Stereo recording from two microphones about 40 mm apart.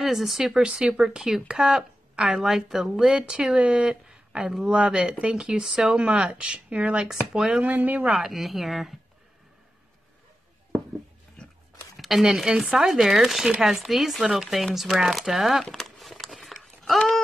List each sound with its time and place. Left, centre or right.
0.0 s speech: centre
0.6 s speech: centre
3.1 s speech: right
3.5 s speech: right
5.3 s speech: centre
7.3 s speech: centre
7.6 s speech: right
8.3 s speech: centre
12.0 s speech: centre
15.6 s a sound: centre